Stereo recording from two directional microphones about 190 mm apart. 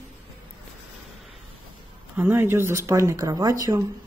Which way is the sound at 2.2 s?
10° right (ahead or behind).